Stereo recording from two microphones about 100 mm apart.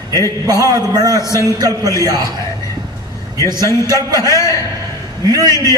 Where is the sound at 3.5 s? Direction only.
40° right (ahead or behind).